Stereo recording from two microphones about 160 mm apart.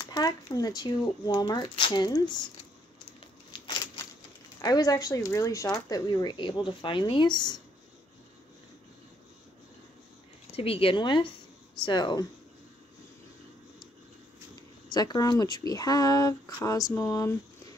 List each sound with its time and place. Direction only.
0.0 s speech: 25° left (ahead or behind)
3.2 s a sound: 30° left (ahead or behind)
4.6 s speech: 25° left (ahead or behind)
10.5 s a woman's voice: 35° left (ahead or behind)
14.9 s speech: 25° left (ahead or behind)